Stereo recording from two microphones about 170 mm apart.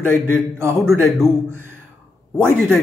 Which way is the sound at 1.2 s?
Centre (ahead or behind).